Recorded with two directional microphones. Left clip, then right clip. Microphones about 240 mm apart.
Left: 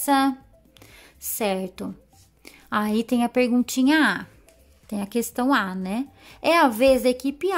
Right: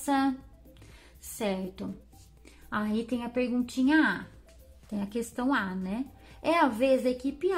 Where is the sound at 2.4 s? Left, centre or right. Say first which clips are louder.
Left 8 dB; left.